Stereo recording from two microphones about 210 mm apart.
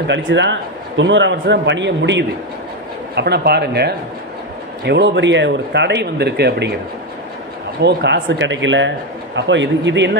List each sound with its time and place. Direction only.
0.0 s a man's voice: 55° right (ahead or behind)
7.8 s a man's voice: 55° right (ahead or behind)